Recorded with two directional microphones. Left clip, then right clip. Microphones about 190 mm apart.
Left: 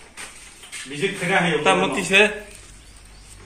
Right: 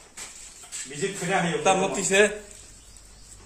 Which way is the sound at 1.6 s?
55° right (ahead or behind).